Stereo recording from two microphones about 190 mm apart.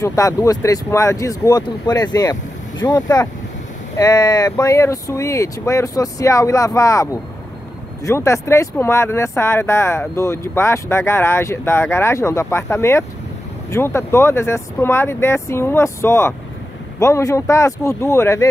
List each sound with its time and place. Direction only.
0.0 s speech: 15° left (ahead or behind)